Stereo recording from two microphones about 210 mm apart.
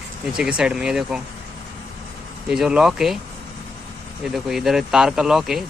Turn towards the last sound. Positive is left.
turn(degrees=0)  # may be behind; listen again after turning